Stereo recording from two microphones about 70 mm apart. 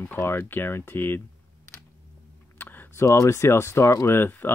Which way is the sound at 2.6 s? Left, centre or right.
Left.